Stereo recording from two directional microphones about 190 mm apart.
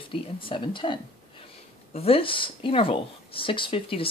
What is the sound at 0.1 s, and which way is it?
Speech, 25° left (ahead or behind).